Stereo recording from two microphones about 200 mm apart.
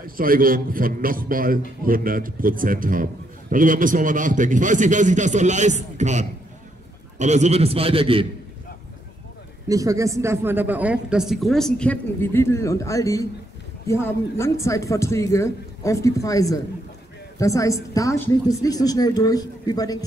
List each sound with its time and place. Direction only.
0.0 s a man's voice: 45° right (ahead or behind); by 8.3 s 25° right (ahead or behind)
9.7 s a man's voice: 15° right (ahead or behind); by 20.0 s 20° left (ahead or behind)